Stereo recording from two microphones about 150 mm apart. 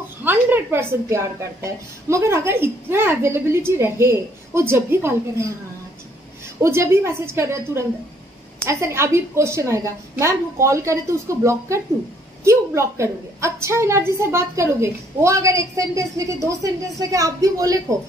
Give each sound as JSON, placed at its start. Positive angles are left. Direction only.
{"t": 0.2, "sound": "a woman's voice", "side_deg": -15}
{"t": 6.6, "sound": "a woman's voice", "side_deg": -15}